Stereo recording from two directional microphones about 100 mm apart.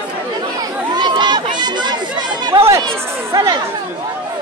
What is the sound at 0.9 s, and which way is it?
Crowd, 50° right (ahead or behind).